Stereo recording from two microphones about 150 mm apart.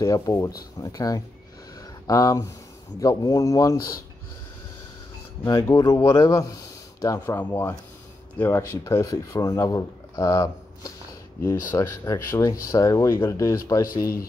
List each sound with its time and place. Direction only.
0.0 s speech: 25° left (ahead or behind)
1.8 s a sound: 25° left (ahead or behind)
3.0 s speech: 25° left (ahead or behind)
5.4 s speech: 15° left (ahead or behind)